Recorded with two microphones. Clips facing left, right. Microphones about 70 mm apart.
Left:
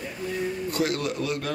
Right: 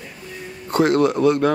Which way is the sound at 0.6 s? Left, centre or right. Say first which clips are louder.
Right 13 dB; right.